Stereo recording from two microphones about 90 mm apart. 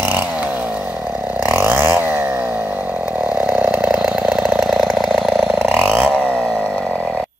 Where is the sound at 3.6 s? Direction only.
15° right (ahead or behind).